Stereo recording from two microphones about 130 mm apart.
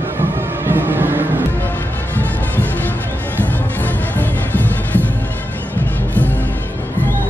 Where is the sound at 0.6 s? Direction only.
15° right (ahead or behind).